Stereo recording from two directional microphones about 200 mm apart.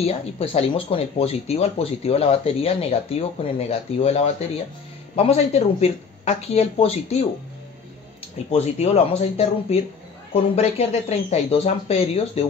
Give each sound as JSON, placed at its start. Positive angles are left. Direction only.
{"t": 0.0, "sound": "speech", "side_deg": 30}
{"t": 8.5, "sound": "speech", "side_deg": 35}